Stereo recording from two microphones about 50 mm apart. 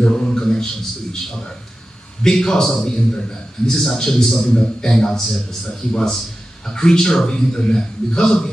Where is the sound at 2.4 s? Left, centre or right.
Centre.